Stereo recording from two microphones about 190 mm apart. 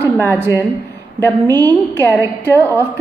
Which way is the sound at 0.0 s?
10° left (ahead or behind).